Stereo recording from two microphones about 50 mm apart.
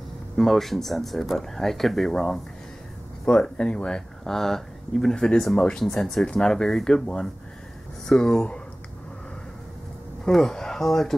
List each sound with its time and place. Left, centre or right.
0.4 s speech: centre
5.9 s speech: centre
10.3 s speech: centre